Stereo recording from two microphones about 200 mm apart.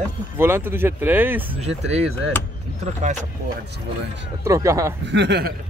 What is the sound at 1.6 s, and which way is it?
Speech, 30° right (ahead or behind).